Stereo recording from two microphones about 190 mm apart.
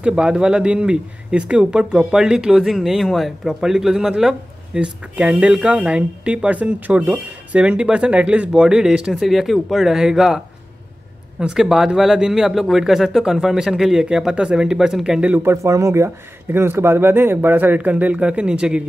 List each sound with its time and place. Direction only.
0.0 s speech: 5° right (ahead or behind)